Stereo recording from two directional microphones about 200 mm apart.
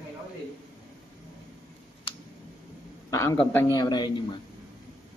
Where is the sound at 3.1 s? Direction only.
15° left (ahead or behind).